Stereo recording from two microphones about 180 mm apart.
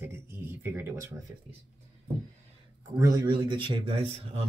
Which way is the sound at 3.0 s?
20° right (ahead or behind).